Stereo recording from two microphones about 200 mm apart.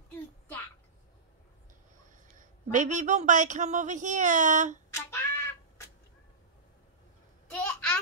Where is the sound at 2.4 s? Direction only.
40° right (ahead or behind).